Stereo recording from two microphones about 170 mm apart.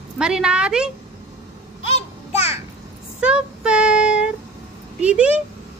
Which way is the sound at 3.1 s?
5° right (ahead or behind).